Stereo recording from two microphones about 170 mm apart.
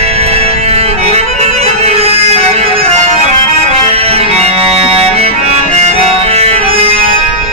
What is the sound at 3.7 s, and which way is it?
Music, 35° right (ahead or behind).